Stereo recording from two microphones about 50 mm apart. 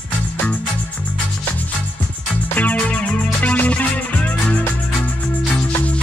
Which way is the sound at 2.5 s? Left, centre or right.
Left.